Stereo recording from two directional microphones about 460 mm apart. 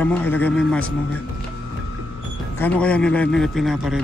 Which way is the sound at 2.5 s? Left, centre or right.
Centre.